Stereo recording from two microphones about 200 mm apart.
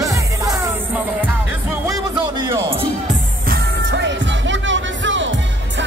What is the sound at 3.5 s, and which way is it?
Music, 60° right (ahead or behind).